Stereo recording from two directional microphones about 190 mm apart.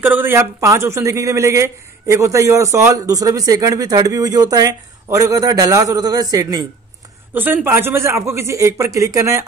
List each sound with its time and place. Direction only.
0.0 s speech: 10° right (ahead or behind)